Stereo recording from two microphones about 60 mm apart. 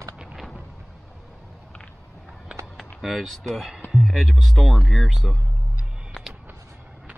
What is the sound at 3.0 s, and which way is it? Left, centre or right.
Speech, centre.